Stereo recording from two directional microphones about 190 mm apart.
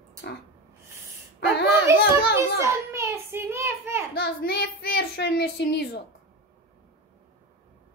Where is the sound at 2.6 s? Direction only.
15° right (ahead or behind).